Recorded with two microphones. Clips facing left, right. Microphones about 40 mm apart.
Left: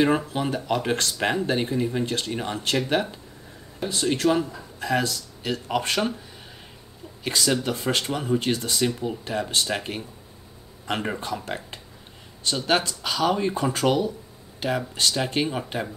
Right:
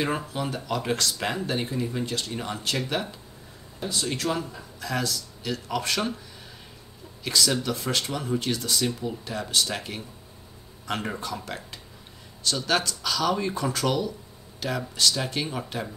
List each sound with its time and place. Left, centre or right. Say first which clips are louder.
0.3 s speech: left 4 dB; left
7.2 s speech: left 1 dB; left
11.1 s speech: left 3 dB; left